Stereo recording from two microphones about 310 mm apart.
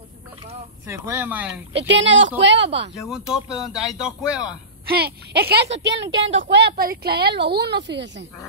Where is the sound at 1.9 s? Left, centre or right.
Right.